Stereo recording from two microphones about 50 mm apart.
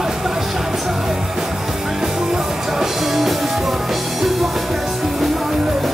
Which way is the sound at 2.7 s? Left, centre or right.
Centre.